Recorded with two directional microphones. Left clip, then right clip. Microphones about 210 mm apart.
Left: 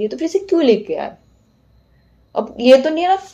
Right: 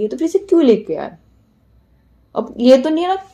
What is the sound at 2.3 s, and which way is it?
Speech, 30° right (ahead or behind).